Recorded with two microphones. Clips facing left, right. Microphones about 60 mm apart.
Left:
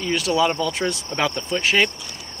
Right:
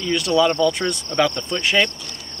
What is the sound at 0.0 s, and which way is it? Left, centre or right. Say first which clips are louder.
Speech: right 2 dB; centre.